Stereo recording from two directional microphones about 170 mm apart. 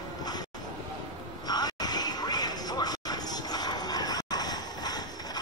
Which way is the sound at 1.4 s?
25° left (ahead or behind).